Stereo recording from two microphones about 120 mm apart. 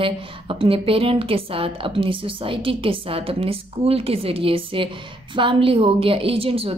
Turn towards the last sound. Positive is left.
turn(degrees=-50)  # may be behind; listen again after turning